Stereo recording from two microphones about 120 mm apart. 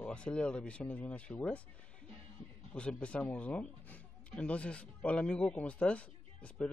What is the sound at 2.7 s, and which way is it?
Speech, 10° left (ahead or behind).